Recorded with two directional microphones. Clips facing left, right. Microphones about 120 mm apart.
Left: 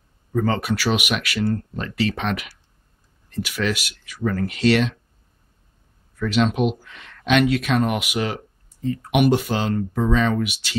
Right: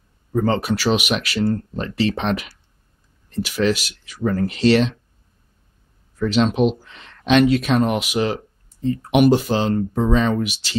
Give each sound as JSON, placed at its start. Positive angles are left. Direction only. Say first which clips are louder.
{"t": 0.3, "sound": "speech", "louder": "right 2 dB", "side_deg": -30}
{"t": 6.1, "sound": "speech", "louder": "right 2 dB", "side_deg": -30}